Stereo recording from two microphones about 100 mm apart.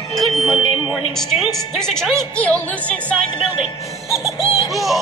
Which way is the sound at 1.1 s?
5° left (ahead or behind).